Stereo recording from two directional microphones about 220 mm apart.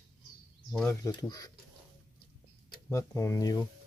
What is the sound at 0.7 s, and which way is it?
Speech, 10° left (ahead or behind).